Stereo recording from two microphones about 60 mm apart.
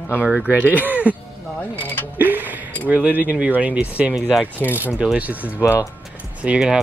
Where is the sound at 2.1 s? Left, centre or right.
Right.